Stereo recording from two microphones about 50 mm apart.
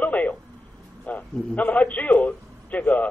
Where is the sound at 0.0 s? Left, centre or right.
Left.